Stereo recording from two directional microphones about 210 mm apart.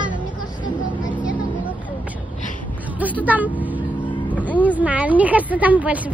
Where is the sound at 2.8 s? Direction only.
5° right (ahead or behind).